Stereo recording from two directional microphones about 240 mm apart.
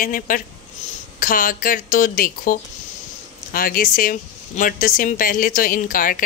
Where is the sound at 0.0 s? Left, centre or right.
Left.